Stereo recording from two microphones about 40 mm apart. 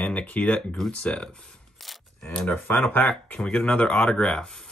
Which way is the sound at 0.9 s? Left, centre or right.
Left.